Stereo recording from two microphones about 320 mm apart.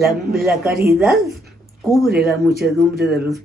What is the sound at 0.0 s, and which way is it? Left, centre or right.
Speech, centre.